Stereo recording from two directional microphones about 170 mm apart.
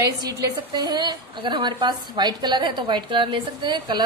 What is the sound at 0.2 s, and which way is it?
A woman's voice, 25° right (ahead or behind).